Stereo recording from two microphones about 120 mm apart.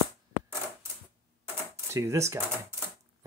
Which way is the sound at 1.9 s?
25° right (ahead or behind).